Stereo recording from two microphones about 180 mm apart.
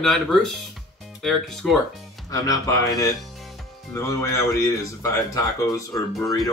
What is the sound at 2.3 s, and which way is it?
Speech, 20° left (ahead or behind).